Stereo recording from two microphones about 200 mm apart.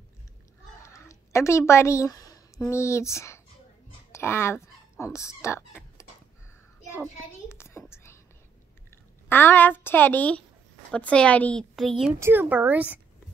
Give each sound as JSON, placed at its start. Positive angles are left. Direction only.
{"t": 0.9, "sound": "a sound", "side_deg": 15}
{"t": 2.7, "sound": "a woman's voice", "side_deg": 15}
{"t": 7.0, "sound": "child singing", "side_deg": 15}
{"t": 9.3, "sound": "a woman's voice", "side_deg": 10}
{"t": 12.2, "sound": "speech", "side_deg": -10}